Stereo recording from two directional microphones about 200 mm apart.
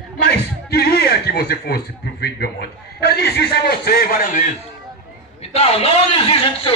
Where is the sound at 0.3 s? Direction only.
50° left (ahead or behind).